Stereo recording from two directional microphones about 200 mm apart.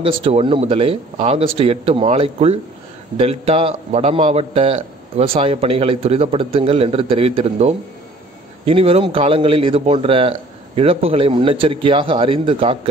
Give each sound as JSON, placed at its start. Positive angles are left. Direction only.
{"t": 0.0, "sound": "a man's voice", "side_deg": -30}